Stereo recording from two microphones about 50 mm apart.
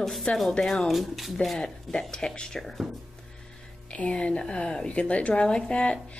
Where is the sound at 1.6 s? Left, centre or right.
Centre.